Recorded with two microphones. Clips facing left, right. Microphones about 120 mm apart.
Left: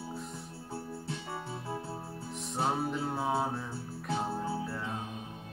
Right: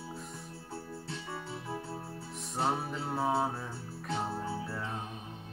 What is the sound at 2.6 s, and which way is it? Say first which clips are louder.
Mantra: left 2 dB; centre (ahead or behind).